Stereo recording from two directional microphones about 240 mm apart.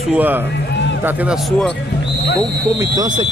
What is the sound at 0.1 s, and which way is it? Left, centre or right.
Speech, centre.